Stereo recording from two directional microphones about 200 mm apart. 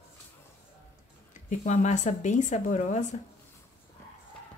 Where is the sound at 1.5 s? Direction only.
35° left (ahead or behind).